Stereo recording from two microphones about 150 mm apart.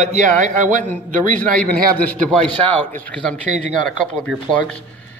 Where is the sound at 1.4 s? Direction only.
5° left (ahead or behind).